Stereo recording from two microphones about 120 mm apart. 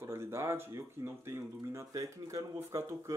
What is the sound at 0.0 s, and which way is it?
Speech, 20° right (ahead or behind).